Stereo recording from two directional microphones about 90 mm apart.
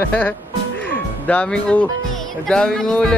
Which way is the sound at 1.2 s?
10° left (ahead or behind).